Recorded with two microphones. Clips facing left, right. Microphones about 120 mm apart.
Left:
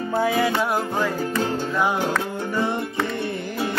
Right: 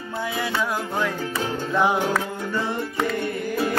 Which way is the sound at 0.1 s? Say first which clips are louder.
Left 7 dB; 45° left (ahead or behind).